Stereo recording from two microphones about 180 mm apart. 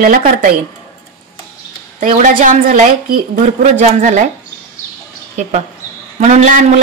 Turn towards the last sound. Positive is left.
turn(degrees=-45)  # may be behind; listen again after turning